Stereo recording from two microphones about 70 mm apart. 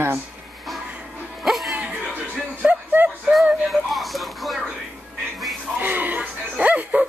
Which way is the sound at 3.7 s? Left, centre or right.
Centre.